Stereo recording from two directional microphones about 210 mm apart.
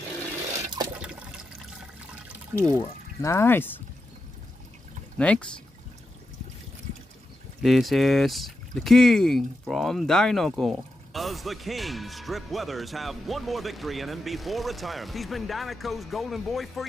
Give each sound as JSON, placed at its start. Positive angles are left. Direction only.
{"t": 0.9, "sound": "water", "side_deg": -5}
{"t": 3.2, "sound": "speech", "side_deg": 15}
{"t": 5.1, "sound": "speech", "side_deg": 5}
{"t": 7.6, "sound": "speech", "side_deg": 0}